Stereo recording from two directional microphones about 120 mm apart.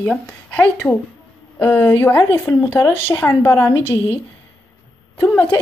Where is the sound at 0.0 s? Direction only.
10° left (ahead or behind).